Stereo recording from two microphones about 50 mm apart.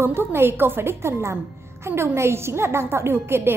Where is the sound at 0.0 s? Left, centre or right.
Right.